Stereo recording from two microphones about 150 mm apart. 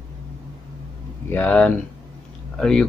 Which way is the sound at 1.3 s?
10° left (ahead or behind).